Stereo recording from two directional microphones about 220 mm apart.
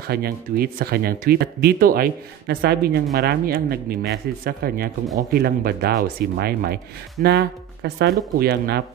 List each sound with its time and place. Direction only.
0.0 s speech: 45° right (ahead or behind)